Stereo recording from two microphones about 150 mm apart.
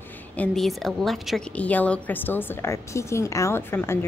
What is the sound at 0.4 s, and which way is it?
A woman's voice, centre (ahead or behind).